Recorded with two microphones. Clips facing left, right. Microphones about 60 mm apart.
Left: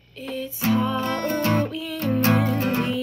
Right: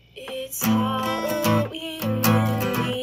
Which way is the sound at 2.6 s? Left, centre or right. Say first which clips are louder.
Left 1 dB; left.